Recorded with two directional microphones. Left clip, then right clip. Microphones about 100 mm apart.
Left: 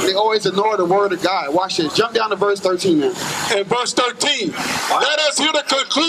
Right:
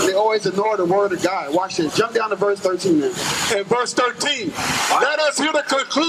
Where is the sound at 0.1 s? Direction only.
25° left (ahead or behind).